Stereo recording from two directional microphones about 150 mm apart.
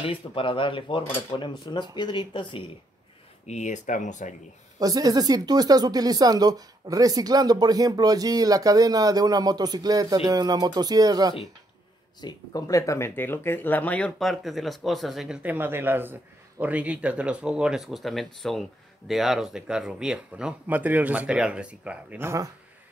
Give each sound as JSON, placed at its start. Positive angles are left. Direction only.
{"t": 0.0, "sound": "speech", "side_deg": 35}
{"t": 3.4, "sound": "speech", "side_deg": 50}
{"t": 4.7, "sound": "speech", "side_deg": -25}
{"t": 12.2, "sound": "speech", "side_deg": 25}